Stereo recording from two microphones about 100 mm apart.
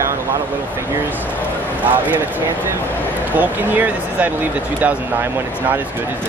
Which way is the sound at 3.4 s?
15° right (ahead or behind).